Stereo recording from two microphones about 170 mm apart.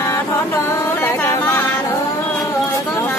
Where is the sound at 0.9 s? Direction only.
15° left (ahead or behind).